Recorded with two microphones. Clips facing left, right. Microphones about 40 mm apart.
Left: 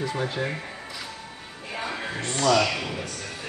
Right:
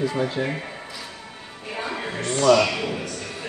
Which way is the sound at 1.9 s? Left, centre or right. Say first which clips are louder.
Right 3 dB; right.